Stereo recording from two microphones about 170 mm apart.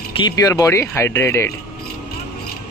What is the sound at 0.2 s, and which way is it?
Speech, 20° left (ahead or behind).